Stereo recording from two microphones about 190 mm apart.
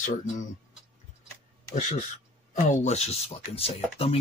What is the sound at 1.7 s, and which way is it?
Speech, 40° left (ahead or behind).